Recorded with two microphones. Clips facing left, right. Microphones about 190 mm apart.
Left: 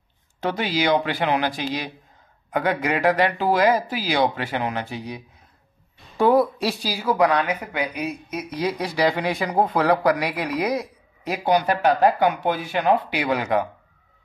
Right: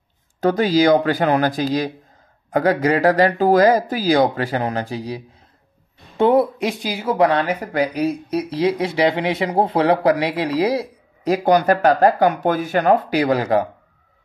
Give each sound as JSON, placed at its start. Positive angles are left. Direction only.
{"t": 0.4, "sound": "speech", "side_deg": -40}